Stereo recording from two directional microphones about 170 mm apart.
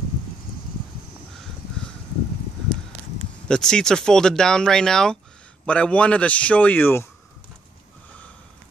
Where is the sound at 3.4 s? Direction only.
5° left (ahead or behind).